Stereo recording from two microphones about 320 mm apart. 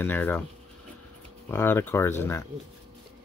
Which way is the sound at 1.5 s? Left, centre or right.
Centre.